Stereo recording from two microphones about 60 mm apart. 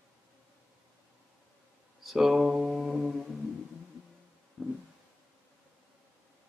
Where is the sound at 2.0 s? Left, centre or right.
Centre.